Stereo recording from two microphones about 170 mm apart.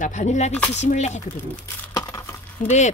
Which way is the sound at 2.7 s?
45° left (ahead or behind).